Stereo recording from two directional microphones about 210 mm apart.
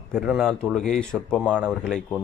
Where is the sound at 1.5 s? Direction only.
5° right (ahead or behind).